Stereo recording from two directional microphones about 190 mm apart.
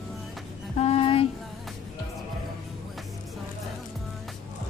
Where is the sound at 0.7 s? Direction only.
30° left (ahead or behind).